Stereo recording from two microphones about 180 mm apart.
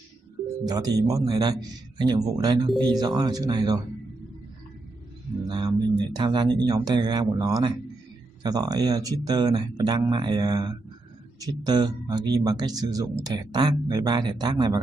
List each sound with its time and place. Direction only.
0.7 s speech: 20° right (ahead or behind)
5.5 s speech: 20° right (ahead or behind)